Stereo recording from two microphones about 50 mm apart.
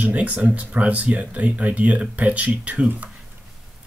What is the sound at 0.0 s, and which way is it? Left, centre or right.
Speech, right.